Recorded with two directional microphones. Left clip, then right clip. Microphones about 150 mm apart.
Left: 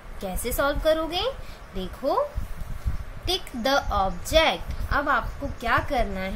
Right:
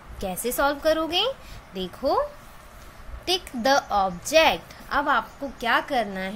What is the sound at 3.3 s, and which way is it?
A woman's voice, 40° right (ahead or behind).